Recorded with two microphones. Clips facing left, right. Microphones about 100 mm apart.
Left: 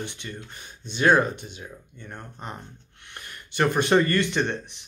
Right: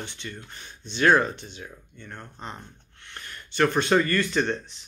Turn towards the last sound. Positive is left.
turn(degrees=20)  # may be behind; listen again after turning